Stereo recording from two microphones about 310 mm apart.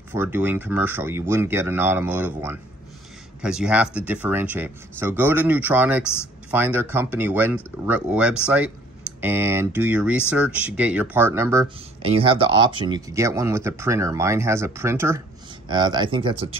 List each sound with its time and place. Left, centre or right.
0.1 s speech: centre